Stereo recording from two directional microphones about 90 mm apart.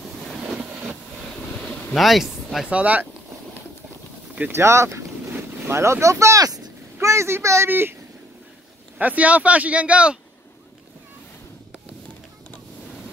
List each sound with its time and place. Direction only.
0.6 s vehicle: 15° right (ahead or behind)
1.6 s boat: 10° left (ahead or behind)
2.0 s speech: centre (ahead or behind)
2.7 s speech: 15° right (ahead or behind)
4.5 s speech: 30° right (ahead or behind)
9.0 s speech: 15° right (ahead or behind)